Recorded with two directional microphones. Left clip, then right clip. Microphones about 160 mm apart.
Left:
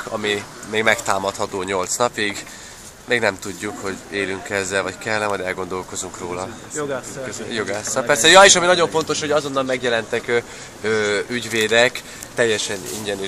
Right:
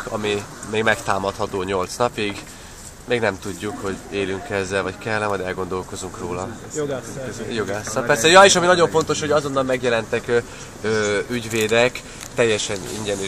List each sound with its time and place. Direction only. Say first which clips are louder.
0.1 s speech: left 1 dB; 10° left (ahead or behind)